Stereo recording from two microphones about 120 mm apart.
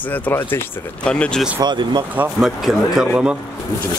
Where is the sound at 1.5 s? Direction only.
35° right (ahead or behind).